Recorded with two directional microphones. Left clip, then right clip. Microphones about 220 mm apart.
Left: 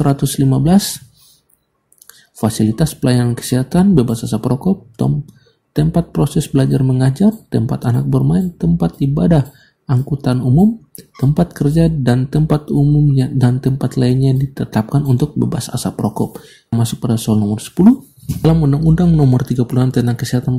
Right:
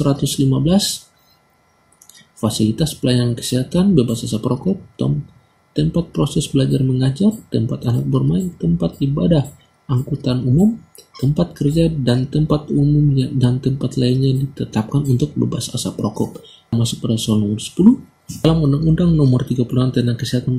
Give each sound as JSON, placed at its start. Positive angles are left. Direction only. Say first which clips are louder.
{"t": 0.0, "sound": "speech", "louder": "left 2 dB", "side_deg": 20}
{"t": 2.4, "sound": "speech", "louder": "left 2 dB", "side_deg": 20}